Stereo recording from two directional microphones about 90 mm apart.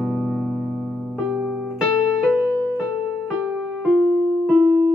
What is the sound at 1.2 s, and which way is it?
Music, 5° right (ahead or behind).